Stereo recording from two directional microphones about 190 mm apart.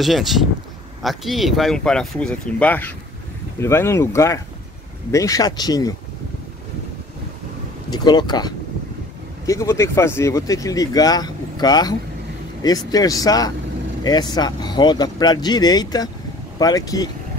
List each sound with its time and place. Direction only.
0.0 s speech: centre (ahead or behind); by 5.9 s 20° left (ahead or behind)
7.9 s speech: 20° left (ahead or behind)